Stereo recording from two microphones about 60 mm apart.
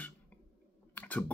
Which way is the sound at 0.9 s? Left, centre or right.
Left.